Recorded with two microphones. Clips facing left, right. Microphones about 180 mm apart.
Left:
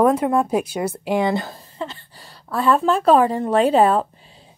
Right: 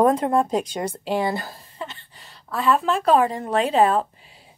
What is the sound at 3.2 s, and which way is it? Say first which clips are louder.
Speech: left 5 dB; 30° left (ahead or behind).